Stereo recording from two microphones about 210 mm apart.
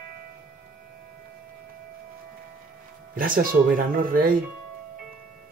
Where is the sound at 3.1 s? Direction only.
40° right (ahead or behind).